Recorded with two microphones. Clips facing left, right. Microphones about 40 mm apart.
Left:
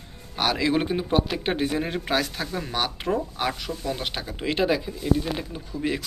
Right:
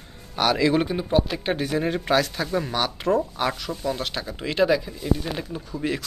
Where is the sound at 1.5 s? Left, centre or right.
Left.